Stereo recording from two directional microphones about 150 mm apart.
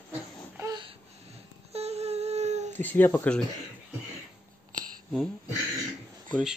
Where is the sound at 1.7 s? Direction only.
45° right (ahead or behind).